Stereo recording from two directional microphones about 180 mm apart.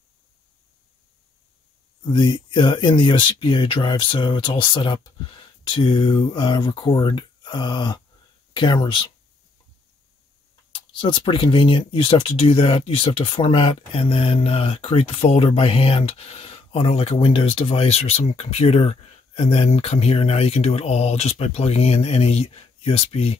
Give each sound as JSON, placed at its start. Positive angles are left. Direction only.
{"t": 2.1, "sound": "speech", "side_deg": 25}
{"t": 10.7, "sound": "speech", "side_deg": 25}